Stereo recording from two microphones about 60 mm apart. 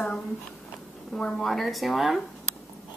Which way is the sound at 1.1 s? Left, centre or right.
Centre.